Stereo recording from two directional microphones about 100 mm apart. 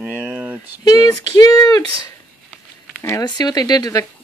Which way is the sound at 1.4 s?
35° left (ahead or behind).